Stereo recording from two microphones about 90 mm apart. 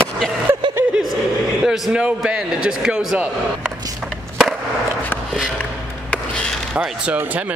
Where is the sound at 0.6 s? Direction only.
65° right (ahead or behind).